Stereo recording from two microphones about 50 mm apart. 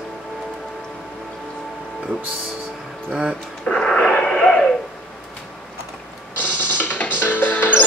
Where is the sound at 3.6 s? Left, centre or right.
Centre.